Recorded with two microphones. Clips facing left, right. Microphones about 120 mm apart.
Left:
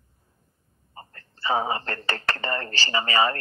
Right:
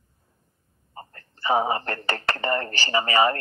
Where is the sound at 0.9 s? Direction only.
25° right (ahead or behind).